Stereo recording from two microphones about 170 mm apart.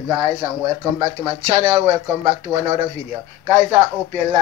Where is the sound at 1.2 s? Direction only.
20° right (ahead or behind).